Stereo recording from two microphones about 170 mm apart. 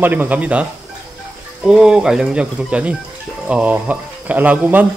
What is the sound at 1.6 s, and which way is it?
Speech, 5° right (ahead or behind).